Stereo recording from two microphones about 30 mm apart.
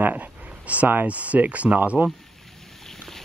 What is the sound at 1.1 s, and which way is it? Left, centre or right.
Speech, right.